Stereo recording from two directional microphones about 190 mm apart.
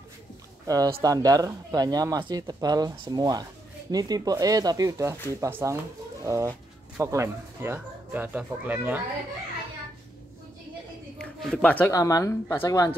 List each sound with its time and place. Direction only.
1.0 s speech: 20° right (ahead or behind)
11.1 s a woman's voice: 5° left (ahead or behind)